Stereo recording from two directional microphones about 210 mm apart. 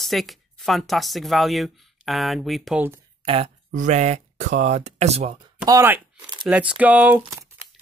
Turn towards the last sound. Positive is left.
turn(degrees=-10)  # may be behind; listen again after turning